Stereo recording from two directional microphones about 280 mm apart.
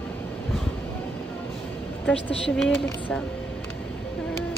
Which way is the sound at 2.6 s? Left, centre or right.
Centre.